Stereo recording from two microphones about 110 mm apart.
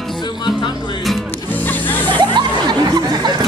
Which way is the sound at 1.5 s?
15° left (ahead or behind).